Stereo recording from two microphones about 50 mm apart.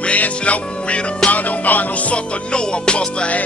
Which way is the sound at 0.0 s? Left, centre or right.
Left.